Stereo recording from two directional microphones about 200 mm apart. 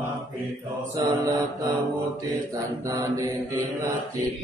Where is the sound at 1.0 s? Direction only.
20° right (ahead or behind).